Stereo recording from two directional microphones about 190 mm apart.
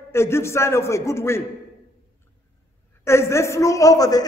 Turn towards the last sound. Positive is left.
turn(degrees=20)  # may be behind; listen again after turning